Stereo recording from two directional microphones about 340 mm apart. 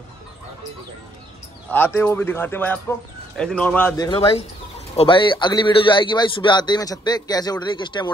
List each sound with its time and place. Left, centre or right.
1.7 s a man's voice: centre